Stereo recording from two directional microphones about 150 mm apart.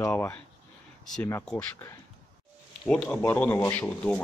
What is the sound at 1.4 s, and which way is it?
Speech, 10° left (ahead or behind).